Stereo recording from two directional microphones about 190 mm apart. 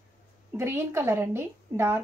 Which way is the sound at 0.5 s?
15° right (ahead or behind).